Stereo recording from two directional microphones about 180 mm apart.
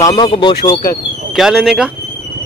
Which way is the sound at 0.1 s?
30° left (ahead or behind).